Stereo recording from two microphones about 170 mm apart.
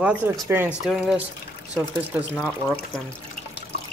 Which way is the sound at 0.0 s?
10° right (ahead or behind).